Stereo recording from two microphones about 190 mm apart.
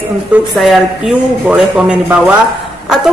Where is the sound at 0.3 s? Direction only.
Centre (ahead or behind).